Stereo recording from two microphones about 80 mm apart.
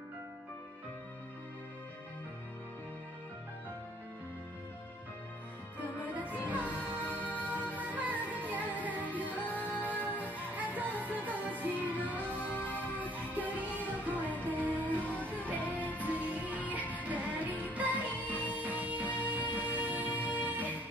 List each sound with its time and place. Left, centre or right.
6.0 s music: centre
12.5 s music: centre
13.4 s music: centre
15.0 s music: centre
16.3 s music: centre